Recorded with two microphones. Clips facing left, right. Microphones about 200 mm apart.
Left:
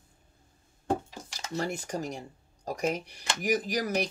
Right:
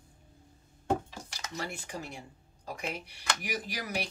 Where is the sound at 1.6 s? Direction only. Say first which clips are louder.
Left 7 dB; 45° left (ahead or behind).